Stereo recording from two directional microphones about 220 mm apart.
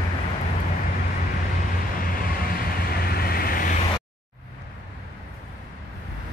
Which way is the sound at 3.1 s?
45° left (ahead or behind).